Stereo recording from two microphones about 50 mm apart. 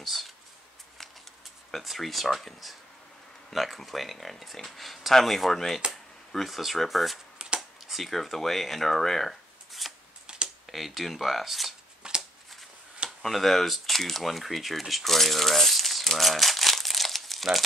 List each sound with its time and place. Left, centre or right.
0.0 s a sound: centre
1.7 s speech: centre
7.3 s shuffling cards: centre
7.8 s speech: centre
12.0 s shuffling cards: centre
13.2 s speech: centre